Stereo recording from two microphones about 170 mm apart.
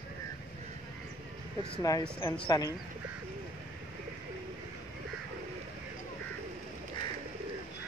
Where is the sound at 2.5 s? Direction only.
20° left (ahead or behind).